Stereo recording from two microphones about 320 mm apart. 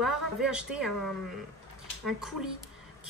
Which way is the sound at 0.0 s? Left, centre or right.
Centre.